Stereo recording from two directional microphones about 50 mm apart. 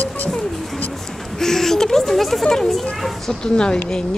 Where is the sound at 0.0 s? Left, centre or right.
Left.